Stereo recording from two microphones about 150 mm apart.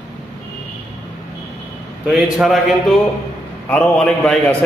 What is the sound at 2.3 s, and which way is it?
Speech, centre (ahead or behind).